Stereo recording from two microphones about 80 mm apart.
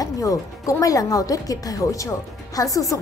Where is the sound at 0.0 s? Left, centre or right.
Left.